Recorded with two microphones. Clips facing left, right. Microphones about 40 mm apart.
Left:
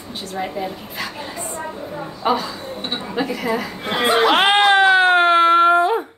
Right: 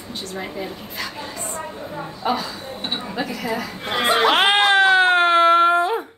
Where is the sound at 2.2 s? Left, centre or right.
Left.